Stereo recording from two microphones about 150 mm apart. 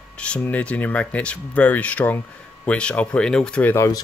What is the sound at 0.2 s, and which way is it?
Speech, 10° left (ahead or behind).